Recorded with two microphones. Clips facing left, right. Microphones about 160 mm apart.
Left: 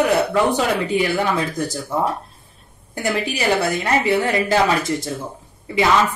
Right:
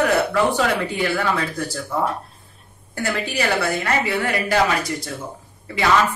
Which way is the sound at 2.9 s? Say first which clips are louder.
Left 2 dB; 20° left (ahead or behind).